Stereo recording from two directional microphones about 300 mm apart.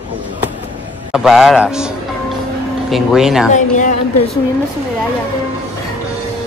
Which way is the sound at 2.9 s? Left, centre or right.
Centre.